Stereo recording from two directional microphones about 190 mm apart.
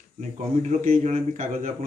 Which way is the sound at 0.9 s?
40° right (ahead or behind).